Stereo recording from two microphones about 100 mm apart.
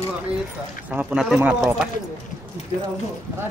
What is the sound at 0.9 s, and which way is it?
Speech, 15° right (ahead or behind).